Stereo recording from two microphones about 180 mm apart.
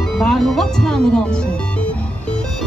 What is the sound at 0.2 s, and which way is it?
Speech, centre (ahead or behind).